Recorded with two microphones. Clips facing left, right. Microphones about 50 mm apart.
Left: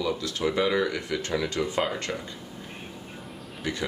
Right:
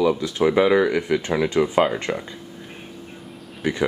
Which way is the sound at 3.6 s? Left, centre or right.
Right.